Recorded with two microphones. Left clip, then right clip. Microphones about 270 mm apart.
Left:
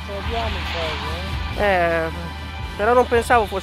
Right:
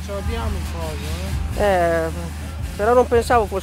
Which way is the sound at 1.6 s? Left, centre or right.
Centre.